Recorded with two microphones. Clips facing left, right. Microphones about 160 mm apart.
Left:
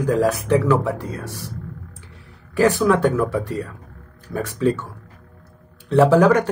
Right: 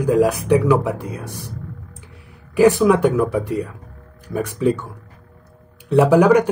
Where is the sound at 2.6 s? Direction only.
15° right (ahead or behind).